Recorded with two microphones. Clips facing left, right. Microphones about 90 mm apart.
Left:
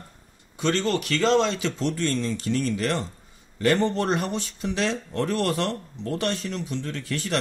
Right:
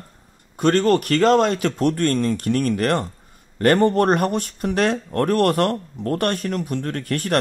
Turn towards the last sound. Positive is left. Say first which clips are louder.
# right 6 dB
turn(degrees=-55)  # may be behind; listen again after turning